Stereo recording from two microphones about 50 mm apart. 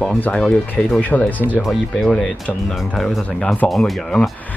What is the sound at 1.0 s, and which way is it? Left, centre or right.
Speech, left.